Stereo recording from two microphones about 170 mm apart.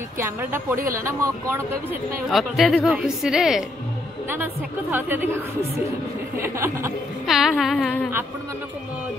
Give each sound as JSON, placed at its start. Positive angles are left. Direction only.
{"t": 0.2, "sound": "speech", "side_deg": -15}
{"t": 2.2, "sound": "a woman's voice", "side_deg": 0}
{"t": 4.9, "sound": "speech", "side_deg": -10}
{"t": 6.4, "sound": "speech", "side_deg": -15}
{"t": 7.2, "sound": "a woman's voice", "side_deg": 0}